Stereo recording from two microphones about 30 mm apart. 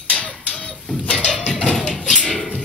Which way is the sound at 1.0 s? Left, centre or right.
Left.